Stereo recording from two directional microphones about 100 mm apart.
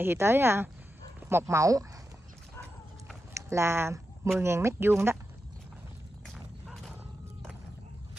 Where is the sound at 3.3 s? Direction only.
30° right (ahead or behind).